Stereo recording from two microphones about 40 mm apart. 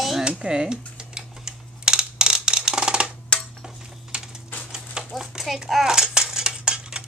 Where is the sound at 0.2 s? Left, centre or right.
Right.